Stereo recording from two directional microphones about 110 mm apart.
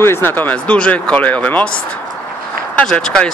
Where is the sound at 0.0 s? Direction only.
20° left (ahead or behind).